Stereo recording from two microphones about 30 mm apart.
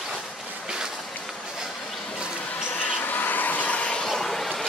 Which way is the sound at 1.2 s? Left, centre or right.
Centre.